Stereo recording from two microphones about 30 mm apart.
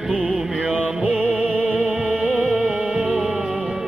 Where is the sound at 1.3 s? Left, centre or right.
Right.